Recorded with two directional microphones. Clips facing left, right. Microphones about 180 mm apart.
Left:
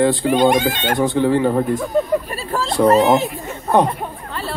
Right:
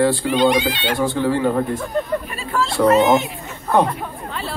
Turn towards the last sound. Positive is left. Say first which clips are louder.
# left 1 dB
turn(degrees=20)  # may be behind; listen again after turning